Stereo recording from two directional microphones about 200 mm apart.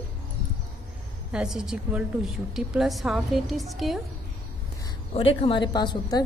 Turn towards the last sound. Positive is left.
turn(degrees=20)  # may be behind; listen again after turning